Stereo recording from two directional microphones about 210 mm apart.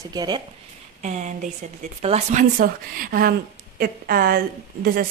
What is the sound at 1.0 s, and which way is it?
A woman's voice, 35° right (ahead or behind).